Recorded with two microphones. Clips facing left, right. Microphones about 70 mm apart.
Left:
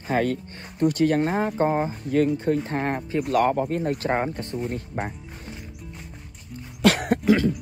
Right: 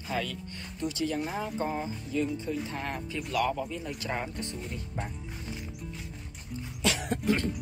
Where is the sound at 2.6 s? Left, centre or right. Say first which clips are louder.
Left 9 dB; left.